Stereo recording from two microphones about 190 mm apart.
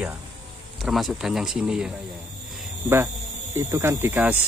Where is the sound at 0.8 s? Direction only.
Centre (ahead or behind).